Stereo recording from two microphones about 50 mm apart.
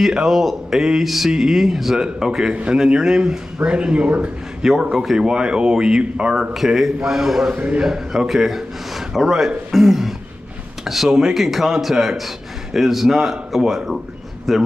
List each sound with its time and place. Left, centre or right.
0.0 s speech: centre
2.5 s speech: right
4.6 s a man's voice: centre
7.5 s speech: right
7.8 s speech: centre